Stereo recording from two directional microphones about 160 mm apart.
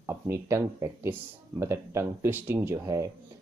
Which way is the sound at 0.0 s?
15° right (ahead or behind).